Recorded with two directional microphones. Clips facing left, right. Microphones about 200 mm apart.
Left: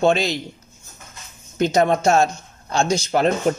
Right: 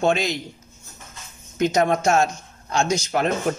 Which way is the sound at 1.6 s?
30° left (ahead or behind).